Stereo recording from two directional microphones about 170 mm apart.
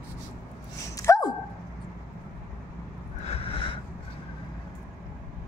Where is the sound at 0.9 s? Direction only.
20° left (ahead or behind).